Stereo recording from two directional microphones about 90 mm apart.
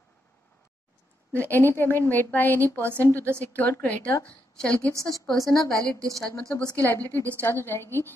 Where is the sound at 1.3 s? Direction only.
20° left (ahead or behind).